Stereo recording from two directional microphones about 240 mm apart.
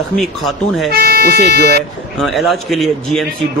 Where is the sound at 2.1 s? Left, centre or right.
Centre.